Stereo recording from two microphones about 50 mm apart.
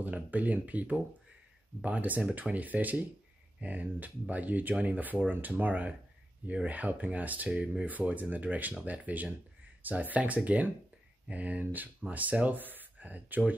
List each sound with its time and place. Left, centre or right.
0.0 s speech: right